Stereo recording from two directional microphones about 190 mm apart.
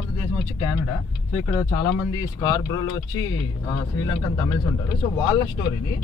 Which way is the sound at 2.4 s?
20° left (ahead or behind).